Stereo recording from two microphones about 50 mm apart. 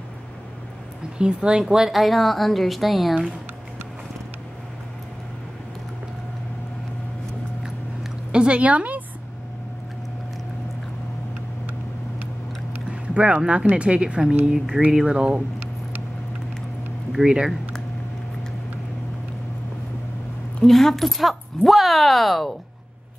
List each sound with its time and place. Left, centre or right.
1.1 s a woman's voice: centre
1.6 s speech: centre
8.3 s a sound: right
13.1 s a woman's voice: right
17.1 s speech: centre
20.6 s speech: centre